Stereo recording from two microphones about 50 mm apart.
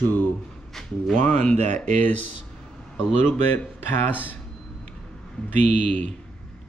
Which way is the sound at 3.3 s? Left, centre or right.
Left.